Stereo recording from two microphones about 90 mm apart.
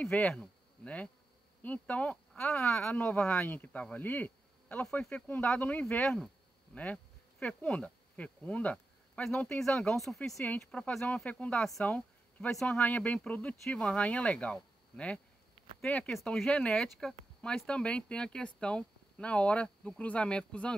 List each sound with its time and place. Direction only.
0.0 s speech: 5° left (ahead or behind)
10.4 s speech: 15° left (ahead or behind)
11.8 s a sound: 15° left (ahead or behind)
12.5 s speech: 10° left (ahead or behind)